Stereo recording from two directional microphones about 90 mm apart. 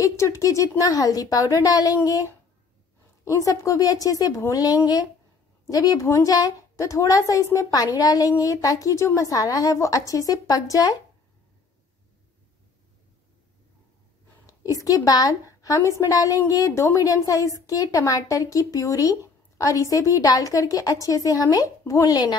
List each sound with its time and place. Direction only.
0.0 s a woman's voice: 35° left (ahead or behind)
3.4 s a woman's voice: 35° left (ahead or behind)
14.4 s a woman's voice: 40° left (ahead or behind)